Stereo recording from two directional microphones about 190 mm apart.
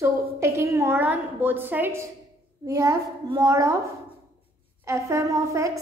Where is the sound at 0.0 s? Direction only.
15° right (ahead or behind).